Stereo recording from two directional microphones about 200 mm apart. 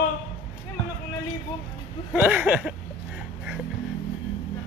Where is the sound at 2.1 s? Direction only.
10° right (ahead or behind).